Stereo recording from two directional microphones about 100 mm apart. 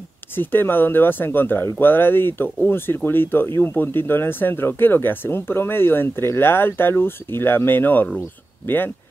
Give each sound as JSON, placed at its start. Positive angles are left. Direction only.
{"t": 0.4, "sound": "speech", "side_deg": 20}